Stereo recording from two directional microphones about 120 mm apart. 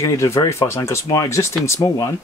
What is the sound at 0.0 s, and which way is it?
Speech, 25° left (ahead or behind).